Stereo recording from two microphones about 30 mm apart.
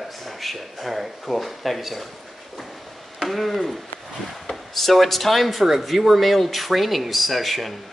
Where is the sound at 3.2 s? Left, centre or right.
Centre.